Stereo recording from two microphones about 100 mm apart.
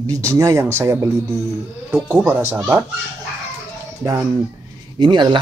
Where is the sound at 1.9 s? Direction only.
15° right (ahead or behind).